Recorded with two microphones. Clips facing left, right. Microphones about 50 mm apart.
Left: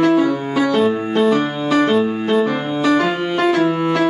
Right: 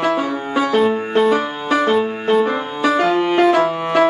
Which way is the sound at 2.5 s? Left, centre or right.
Right.